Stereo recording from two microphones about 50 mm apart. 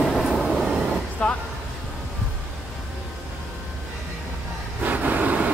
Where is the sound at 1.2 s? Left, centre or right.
Left.